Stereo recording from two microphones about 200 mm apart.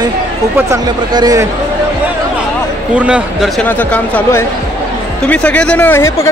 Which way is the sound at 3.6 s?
10° left (ahead or behind).